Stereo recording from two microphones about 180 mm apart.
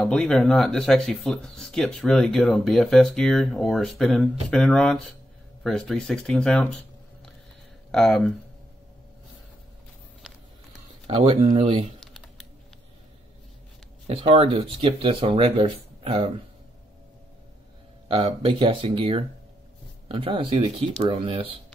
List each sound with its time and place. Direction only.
0.0 s speech: 5° left (ahead or behind)
7.9 s speech: 5° left (ahead or behind)
11.1 s speech: 30° right (ahead or behind)
14.0 s speech: 30° right (ahead or behind)
18.0 s speech: 30° right (ahead or behind)